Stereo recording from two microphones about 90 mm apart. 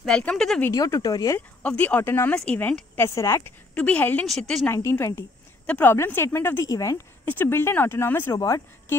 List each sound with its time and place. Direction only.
0.2 s speech: 10° left (ahead or behind)
0.7 s speech: 40° left (ahead or behind)
1.6 s speech: 15° left (ahead or behind)
3.2 s speech: 35° left (ahead or behind)
3.7 s speech: 15° left (ahead or behind)
4.3 s a woman's voice: 5° left (ahead or behind)
4.7 s speech: 35° left (ahead or behind)
6.7 s speech: 40° left (ahead or behind)
7.2 s speech: 20° left (ahead or behind)
8.4 s speech: 40° left (ahead or behind)